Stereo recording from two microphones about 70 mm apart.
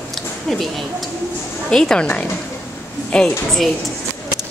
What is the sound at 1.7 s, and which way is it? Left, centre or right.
A woman's voice, centre.